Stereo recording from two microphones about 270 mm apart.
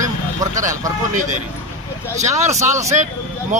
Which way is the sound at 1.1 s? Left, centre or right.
Right.